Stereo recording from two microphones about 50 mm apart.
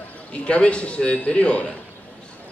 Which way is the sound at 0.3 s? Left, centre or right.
Left.